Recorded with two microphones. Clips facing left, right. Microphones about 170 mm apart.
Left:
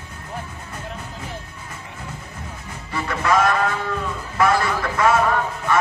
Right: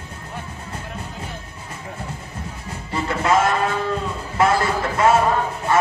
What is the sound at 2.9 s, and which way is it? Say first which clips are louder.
Music: right 1 dB; 25° right (ahead or behind).